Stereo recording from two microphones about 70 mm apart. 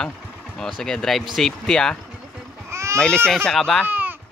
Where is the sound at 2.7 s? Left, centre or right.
Right.